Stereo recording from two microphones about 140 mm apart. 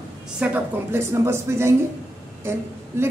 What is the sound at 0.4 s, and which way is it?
A man's voice, 10° right (ahead or behind).